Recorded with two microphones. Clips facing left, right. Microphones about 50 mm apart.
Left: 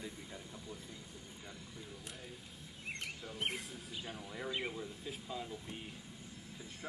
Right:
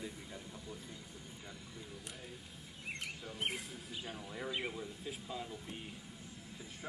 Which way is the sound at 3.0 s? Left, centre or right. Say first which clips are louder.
Even; centre.